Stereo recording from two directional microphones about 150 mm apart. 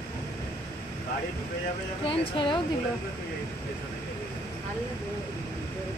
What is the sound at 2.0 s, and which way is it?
Speech, 40° left (ahead or behind).